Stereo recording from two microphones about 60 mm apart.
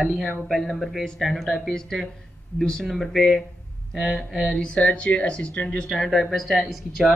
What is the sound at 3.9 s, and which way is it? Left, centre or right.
Mantra, centre.